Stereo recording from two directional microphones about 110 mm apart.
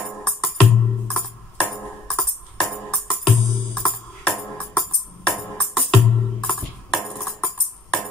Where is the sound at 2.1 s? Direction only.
10° left (ahead or behind).